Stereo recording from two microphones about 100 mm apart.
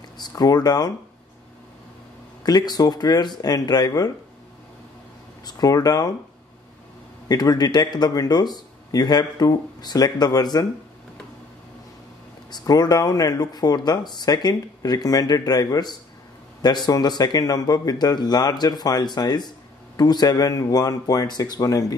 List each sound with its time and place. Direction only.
0.2 s speech: 40° left (ahead or behind)
2.4 s speech: 40° left (ahead or behind)
5.4 s speech: 40° left (ahead or behind)
7.2 s speech: 40° left (ahead or behind)
12.4 s speech: 40° left (ahead or behind)